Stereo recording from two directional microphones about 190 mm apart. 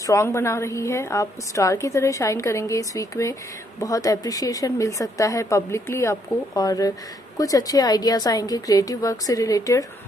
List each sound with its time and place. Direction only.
0.0 s a woman's voice: 15° left (ahead or behind)